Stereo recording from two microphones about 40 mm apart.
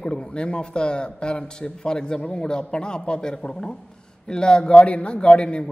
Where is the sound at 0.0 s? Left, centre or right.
Left.